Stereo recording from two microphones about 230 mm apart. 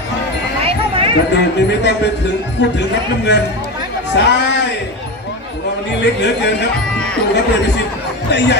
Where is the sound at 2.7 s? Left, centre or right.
Left.